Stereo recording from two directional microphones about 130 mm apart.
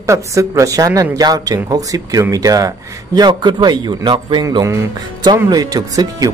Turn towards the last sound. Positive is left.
turn(degrees=-30)  # may be behind; listen again after turning